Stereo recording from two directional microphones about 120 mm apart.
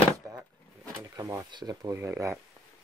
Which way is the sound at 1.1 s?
25° right (ahead or behind).